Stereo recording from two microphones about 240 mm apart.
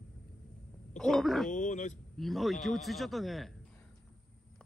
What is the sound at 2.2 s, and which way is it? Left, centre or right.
A man's voice, centre.